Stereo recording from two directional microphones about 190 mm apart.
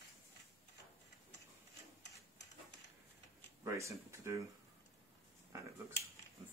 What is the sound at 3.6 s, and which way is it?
Speech, 15° right (ahead or behind).